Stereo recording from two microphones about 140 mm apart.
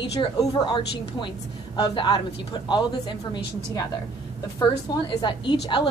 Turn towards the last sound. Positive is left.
turn(degrees=35)  # may be behind; listen again after turning